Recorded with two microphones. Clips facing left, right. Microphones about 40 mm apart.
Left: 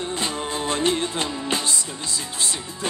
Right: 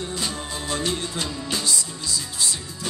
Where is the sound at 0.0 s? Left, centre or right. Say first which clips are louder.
Left 3 dB; left.